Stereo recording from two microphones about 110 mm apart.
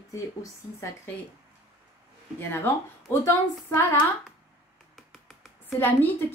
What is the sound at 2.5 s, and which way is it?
Speech, 20° left (ahead or behind).